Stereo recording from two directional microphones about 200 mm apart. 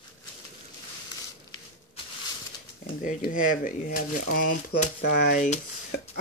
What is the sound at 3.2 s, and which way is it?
Speech, 40° left (ahead or behind).